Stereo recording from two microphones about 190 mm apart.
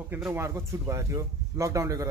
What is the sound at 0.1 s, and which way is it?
Speech, 10° right (ahead or behind).